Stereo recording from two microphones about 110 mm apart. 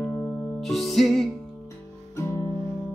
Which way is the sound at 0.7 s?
Centre (ahead or behind).